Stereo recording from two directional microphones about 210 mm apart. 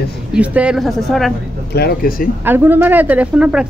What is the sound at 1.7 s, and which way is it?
Speech, 50° left (ahead or behind).